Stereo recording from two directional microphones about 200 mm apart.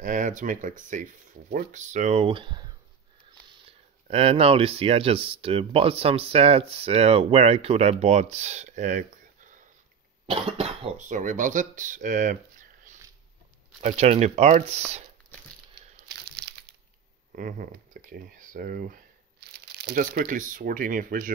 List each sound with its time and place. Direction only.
0.0 s speech: 40° right (ahead or behind)
16.1 s crumpling: 55° right (ahead or behind)
17.4 s speech: 45° right (ahead or behind)